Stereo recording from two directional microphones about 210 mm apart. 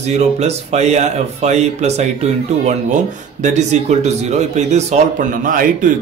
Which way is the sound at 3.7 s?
35° right (ahead or behind).